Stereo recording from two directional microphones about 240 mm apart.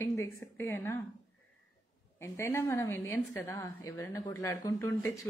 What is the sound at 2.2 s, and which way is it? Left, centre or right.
A woman's voice, centre.